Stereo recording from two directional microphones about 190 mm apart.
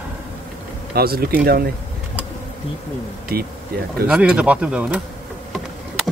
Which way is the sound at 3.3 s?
55° right (ahead or behind).